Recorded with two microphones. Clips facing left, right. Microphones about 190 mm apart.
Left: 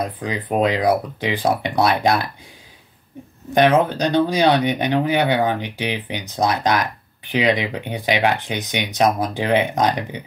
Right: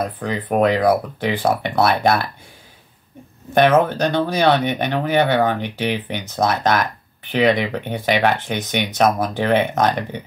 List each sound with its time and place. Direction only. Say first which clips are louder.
0.0 s speech: right 1 dB; 15° left (ahead or behind)
3.5 s speech: right 1 dB; 15° left (ahead or behind)